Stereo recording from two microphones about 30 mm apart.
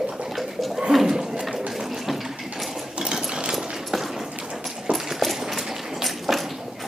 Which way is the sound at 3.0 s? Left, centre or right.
Right.